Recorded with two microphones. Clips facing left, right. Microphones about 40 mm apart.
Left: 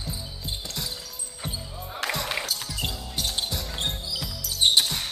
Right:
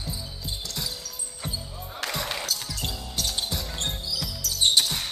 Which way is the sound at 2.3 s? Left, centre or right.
Centre.